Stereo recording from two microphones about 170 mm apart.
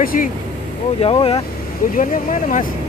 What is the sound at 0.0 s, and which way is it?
Speech, 55° left (ahead or behind).